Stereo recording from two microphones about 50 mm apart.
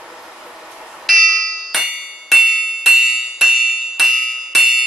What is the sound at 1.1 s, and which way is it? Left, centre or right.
Bell, centre.